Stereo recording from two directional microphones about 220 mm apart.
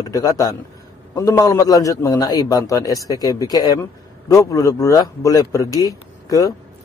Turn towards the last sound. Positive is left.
turn(degrees=15)  # may be behind; listen again after turning